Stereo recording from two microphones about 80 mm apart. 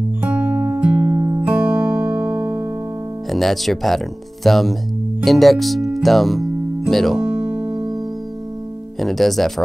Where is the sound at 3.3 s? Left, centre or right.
Centre.